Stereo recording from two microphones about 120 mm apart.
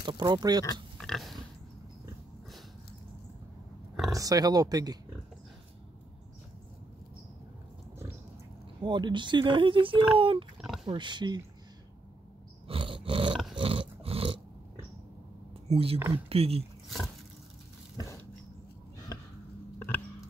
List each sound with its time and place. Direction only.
0.0 s speech: 40° right (ahead or behind)
0.9 s pig: 5° left (ahead or behind)
4.1 s speech: 30° right (ahead or behind)
8.8 s speech: 40° right (ahead or behind)
10.6 s oink: 5° right (ahead or behind)
10.9 s speech: 40° right (ahead or behind)
12.6 s roar: 50° right (ahead or behind)
13.6 s a sound: 50° right (ahead or behind)
15.7 s speech: 55° right (ahead or behind)